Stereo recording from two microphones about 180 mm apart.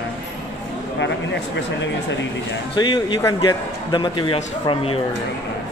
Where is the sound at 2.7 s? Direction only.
25° left (ahead or behind).